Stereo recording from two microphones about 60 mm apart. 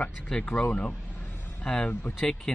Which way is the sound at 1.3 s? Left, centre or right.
Left.